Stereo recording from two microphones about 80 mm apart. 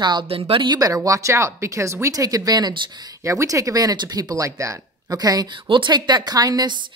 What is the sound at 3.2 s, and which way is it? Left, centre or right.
Speech, right.